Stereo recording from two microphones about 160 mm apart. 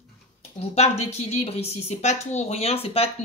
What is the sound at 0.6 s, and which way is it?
A woman's voice, 40° left (ahead or behind).